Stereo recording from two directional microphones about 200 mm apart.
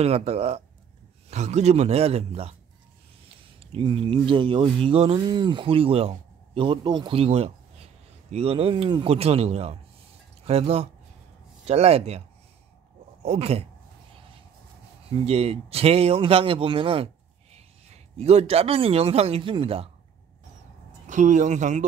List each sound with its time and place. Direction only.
0.0 s a man's voice: 30° right (ahead or behind)
3.5 s a man's voice: 25° right (ahead or behind)
13.2 s a man's voice: 30° right (ahead or behind)
15.0 s speech: 30° right (ahead or behind)
21.1 s a man's voice: 35° right (ahead or behind)